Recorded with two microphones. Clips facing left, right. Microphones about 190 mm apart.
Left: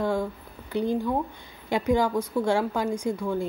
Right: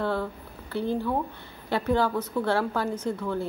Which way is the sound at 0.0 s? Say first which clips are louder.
Left 2 dB; 15° left (ahead or behind).